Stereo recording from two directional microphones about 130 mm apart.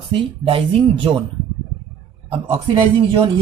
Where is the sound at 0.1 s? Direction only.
45° right (ahead or behind).